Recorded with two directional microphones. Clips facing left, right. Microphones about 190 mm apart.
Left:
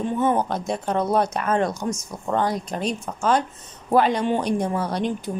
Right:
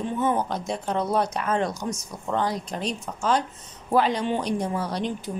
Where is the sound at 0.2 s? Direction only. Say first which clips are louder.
Left 2 dB; 50° left (ahead or behind).